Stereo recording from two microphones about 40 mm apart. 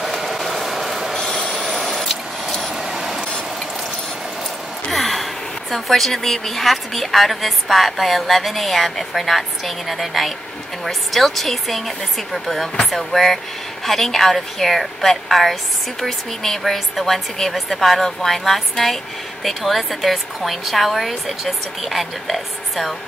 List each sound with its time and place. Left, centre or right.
0.0 s vehicle: centre
1.1 s a sound: centre
1.7 s vehicle: centre
4.9 s a woman's voice: centre